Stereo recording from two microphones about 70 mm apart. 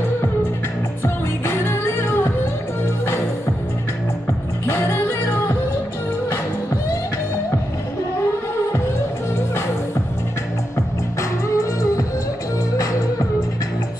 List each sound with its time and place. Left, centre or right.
1.0 s music: left
4.6 s music: left
11.4 s music: left